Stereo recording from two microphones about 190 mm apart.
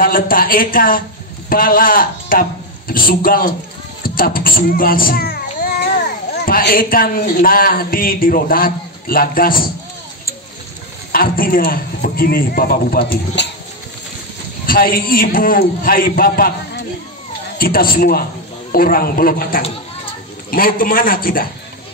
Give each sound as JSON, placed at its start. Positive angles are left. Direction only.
{"t": 0.0, "sound": "a man's voice", "side_deg": 50}
{"t": 11.1, "sound": "a man's voice", "side_deg": 50}
{"t": 14.7, "sound": "a man's voice", "side_deg": 50}